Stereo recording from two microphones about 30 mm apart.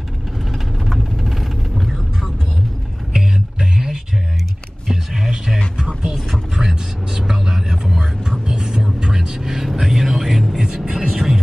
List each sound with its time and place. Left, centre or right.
0.5 s vehicle: centre
3.1 s a sound: right
4.8 s a sound: centre
6.5 s vehicle: centre
8.5 s music: right; by 10.6 s centre
10.9 s vehicle: centre